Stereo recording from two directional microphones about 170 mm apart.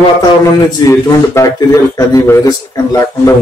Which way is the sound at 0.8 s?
20° left (ahead or behind).